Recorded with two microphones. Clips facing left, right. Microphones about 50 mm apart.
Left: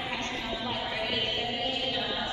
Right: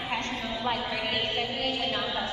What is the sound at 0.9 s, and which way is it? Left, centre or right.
Music, right.